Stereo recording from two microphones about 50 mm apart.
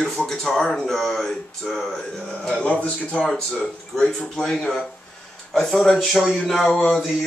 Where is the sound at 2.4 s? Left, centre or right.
Left.